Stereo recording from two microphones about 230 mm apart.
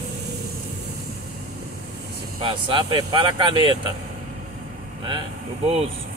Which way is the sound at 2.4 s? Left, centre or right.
Right.